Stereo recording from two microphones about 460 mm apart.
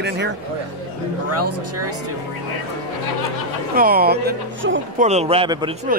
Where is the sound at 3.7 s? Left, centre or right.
Centre.